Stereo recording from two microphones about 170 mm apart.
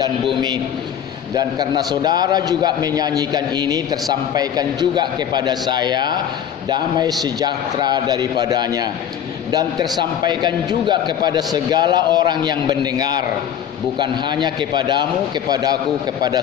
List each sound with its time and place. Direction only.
1.3 s a man's voice: 20° right (ahead or behind)